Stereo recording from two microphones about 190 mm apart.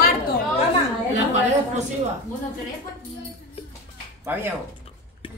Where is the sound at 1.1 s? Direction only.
40° right (ahead or behind).